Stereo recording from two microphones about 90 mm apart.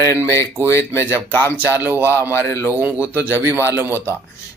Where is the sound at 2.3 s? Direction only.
30° left (ahead or behind).